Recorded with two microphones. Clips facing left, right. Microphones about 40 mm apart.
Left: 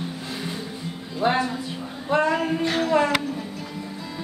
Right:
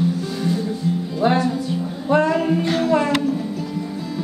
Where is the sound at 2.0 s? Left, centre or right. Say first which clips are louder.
Right 4 dB; centre.